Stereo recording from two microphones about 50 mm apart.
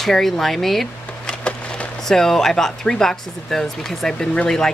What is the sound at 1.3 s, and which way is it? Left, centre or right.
Wood, left.